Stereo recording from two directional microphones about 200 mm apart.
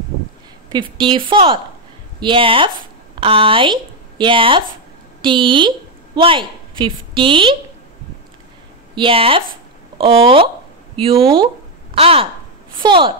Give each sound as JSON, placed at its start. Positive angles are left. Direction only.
{"t": 0.7, "sound": "a woman's voice", "side_deg": -25}
{"t": 8.9, "sound": "a woman's voice", "side_deg": -25}
{"t": 11.9, "sound": "a woman's voice", "side_deg": -30}